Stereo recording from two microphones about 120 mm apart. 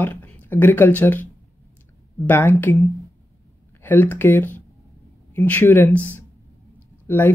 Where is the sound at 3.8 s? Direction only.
15° left (ahead or behind).